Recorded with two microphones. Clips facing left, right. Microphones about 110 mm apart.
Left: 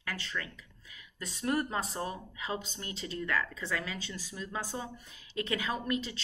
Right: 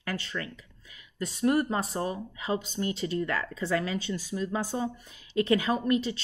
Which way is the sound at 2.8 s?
55° right (ahead or behind).